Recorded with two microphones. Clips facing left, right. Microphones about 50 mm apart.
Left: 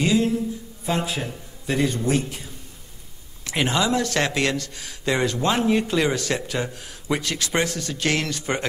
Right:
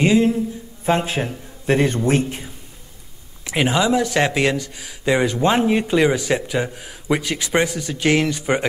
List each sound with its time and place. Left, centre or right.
0.0 s a man's voice: right
3.4 s speech: centre